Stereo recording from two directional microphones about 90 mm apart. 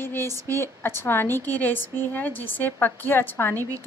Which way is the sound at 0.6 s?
25° left (ahead or behind).